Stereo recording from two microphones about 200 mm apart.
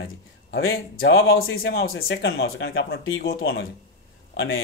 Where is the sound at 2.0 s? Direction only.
75° left (ahead or behind).